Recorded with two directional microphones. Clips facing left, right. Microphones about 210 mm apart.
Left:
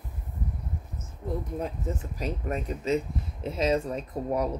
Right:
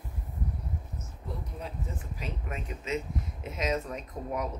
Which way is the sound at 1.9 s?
45° left (ahead or behind).